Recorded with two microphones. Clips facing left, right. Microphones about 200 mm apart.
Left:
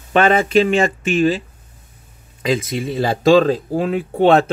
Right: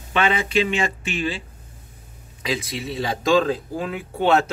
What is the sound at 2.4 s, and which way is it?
Speech, 45° left (ahead or behind).